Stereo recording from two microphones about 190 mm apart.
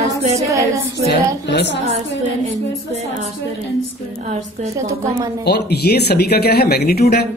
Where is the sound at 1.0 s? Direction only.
65° left (ahead or behind).